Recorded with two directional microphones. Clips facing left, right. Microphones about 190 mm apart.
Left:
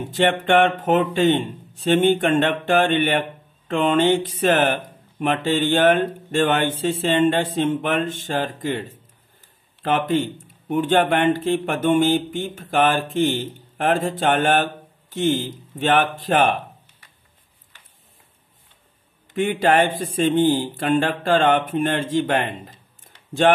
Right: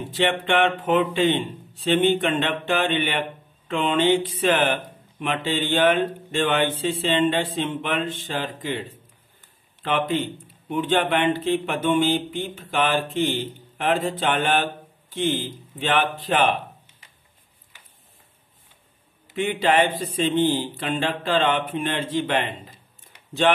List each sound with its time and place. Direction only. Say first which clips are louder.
0.1 s speech: left 4 dB; 45° left (ahead or behind)
19.3 s speech: left 2 dB; 45° left (ahead or behind)